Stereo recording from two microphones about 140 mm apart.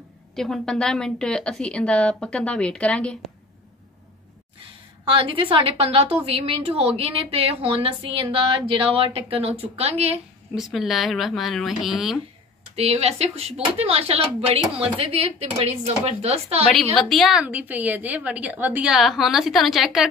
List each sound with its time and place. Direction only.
0.4 s a woman's voice: 5° left (ahead or behind)
5.0 s a woman's voice: 40° right (ahead or behind)
10.5 s a woman's voice: centre (ahead or behind)
12.7 s a woman's voice: 45° right (ahead or behind)
16.9 s a woman's voice: centre (ahead or behind)